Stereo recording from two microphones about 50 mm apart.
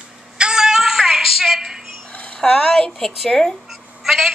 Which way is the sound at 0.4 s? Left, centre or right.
Centre.